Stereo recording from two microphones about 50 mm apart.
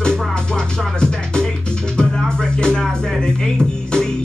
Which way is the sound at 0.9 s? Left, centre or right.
Centre.